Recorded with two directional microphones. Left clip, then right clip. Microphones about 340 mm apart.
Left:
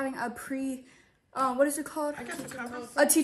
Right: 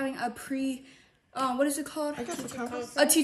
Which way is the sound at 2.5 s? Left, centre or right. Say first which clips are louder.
Right 3 dB; centre.